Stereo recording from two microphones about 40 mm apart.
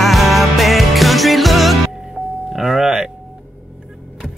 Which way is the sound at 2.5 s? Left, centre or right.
Centre.